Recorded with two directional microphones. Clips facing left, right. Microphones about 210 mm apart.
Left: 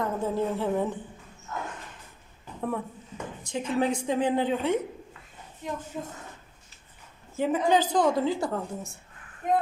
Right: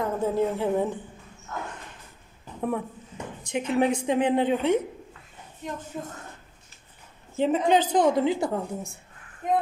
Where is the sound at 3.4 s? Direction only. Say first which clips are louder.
Right 3 dB; 20° right (ahead or behind).